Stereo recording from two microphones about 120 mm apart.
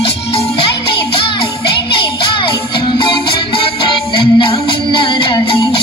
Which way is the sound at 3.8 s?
40° left (ahead or behind).